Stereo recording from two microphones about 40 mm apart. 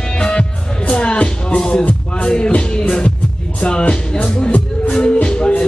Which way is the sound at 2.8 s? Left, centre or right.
Left.